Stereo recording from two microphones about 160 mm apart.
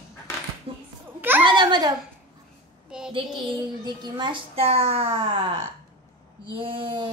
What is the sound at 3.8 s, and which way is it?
A woman's voice, 30° right (ahead or behind).